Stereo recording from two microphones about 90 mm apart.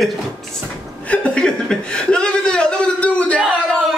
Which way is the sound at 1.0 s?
10° left (ahead or behind).